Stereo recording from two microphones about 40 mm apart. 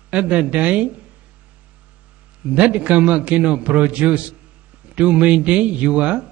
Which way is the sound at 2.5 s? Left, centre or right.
Right.